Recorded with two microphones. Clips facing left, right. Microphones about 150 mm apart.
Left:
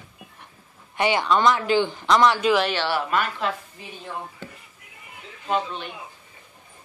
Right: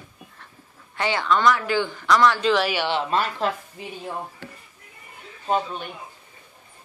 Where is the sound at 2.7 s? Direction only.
15° right (ahead or behind).